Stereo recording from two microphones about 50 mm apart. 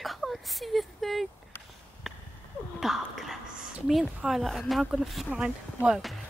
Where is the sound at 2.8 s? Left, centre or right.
Centre.